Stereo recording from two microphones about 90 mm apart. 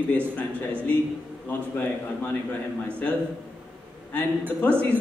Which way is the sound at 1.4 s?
20° left (ahead or behind).